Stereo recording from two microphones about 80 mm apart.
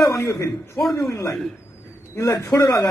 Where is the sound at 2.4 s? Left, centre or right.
Left.